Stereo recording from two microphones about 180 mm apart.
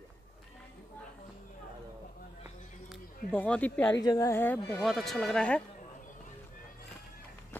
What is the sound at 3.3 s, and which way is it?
Speech, 10° left (ahead or behind).